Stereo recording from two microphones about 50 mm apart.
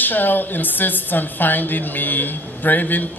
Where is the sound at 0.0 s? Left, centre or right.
Left.